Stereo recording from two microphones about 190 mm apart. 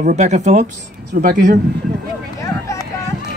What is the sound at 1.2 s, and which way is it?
Speech, 50° right (ahead or behind).